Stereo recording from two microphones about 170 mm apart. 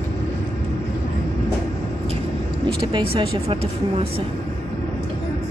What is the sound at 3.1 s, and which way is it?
Speech, 35° right (ahead or behind).